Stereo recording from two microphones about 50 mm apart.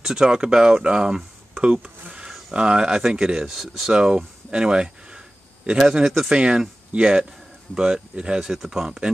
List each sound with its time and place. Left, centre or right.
0.0 s speech: centre
3.4 s speech: centre
4.5 s speech: centre
8.5 s speech: centre